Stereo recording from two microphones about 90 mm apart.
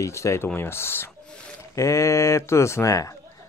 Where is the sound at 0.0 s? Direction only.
35° left (ahead or behind).